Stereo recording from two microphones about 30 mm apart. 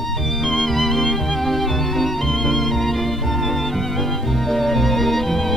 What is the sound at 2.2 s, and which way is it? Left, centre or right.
Music, centre.